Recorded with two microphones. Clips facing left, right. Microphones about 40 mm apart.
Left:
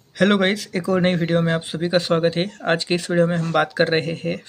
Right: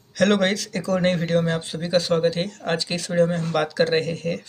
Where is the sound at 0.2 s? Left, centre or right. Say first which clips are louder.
Left 2 dB; centre.